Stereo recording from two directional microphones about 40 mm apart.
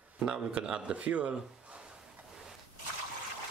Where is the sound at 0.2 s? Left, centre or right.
Right.